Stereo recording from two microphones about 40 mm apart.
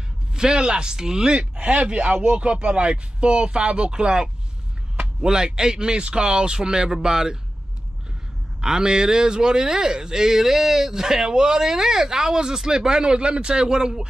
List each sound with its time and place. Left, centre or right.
0.3 s speech: centre
1.4 s speech: right; by 7.3 s centre
8.5 s speech: centre